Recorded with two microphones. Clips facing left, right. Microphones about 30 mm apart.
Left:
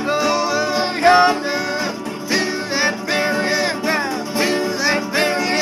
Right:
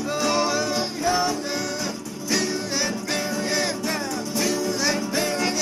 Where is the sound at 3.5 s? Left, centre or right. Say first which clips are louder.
Left 6 dB; left.